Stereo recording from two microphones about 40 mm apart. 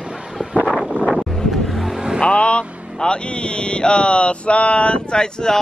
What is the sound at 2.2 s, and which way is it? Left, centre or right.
Vehicle, left.